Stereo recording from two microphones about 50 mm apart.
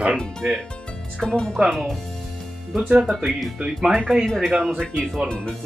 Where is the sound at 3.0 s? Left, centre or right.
Centre.